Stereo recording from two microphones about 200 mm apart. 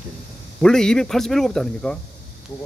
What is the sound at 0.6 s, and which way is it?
Speech, 5° left (ahead or behind).